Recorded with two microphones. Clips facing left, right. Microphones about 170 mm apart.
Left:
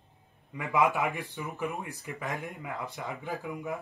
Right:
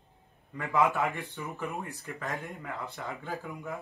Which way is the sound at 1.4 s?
10° left (ahead or behind).